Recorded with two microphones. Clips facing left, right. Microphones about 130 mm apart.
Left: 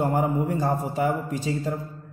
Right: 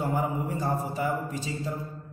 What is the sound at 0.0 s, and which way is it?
A man's voice, 60° left (ahead or behind).